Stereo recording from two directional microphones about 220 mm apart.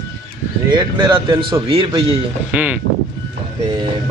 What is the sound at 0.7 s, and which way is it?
Speech, 20° right (ahead or behind).